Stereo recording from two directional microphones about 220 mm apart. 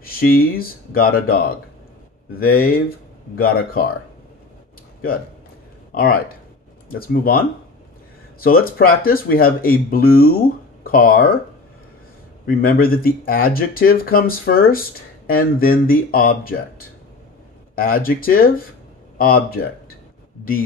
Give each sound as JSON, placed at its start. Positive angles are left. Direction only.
{"t": 0.0, "sound": "speech", "side_deg": 40}
{"t": 5.9, "sound": "speech", "side_deg": 40}
{"t": 8.4, "sound": "speech", "side_deg": 45}
{"t": 12.4, "sound": "speech", "side_deg": 40}